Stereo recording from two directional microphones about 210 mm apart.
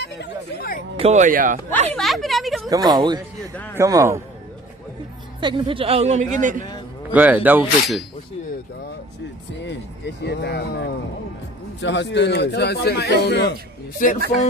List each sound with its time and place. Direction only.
0.0 s chatter: 50° left (ahead or behind)
0.9 s speech: 35° right (ahead or behind)
1.7 s a woman's voice: 5° left (ahead or behind)
2.7 s speech: 20° right (ahead or behind)
5.4 s speech: 25° right (ahead or behind)
7.2 s speech: 10° right (ahead or behind)
9.7 s speech: 55° left (ahead or behind)
14.0 s speech: 40° left (ahead or behind)